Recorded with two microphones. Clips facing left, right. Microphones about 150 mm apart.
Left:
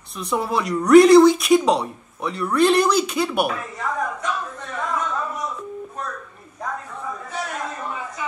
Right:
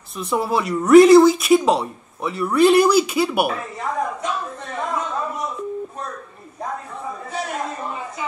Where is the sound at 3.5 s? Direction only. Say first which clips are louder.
Right 1 dB; 25° right (ahead or behind).